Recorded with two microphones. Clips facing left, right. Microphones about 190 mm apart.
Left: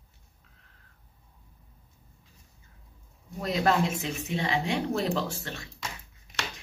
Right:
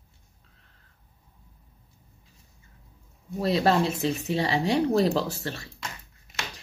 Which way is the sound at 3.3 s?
30° right (ahead or behind).